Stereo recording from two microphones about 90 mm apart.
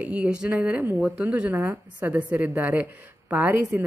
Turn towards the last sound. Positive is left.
turn(degrees=-20)  # may be behind; listen again after turning